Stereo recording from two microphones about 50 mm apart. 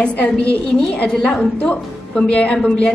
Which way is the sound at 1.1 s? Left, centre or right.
Centre.